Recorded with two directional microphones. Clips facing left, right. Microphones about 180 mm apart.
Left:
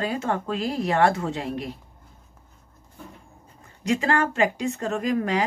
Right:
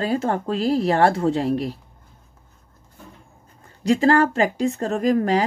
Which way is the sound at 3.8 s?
35° right (ahead or behind).